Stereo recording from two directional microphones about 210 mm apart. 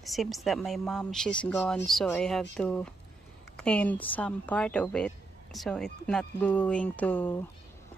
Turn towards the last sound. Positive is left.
turn(degrees=10)  # may be behind; listen again after turning